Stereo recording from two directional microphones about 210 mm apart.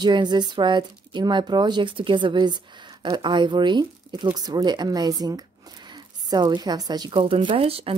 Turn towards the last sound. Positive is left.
turn(degrees=-30)  # may be behind; listen again after turning